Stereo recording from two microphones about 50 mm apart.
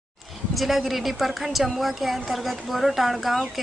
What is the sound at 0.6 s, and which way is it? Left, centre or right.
A woman's voice, centre.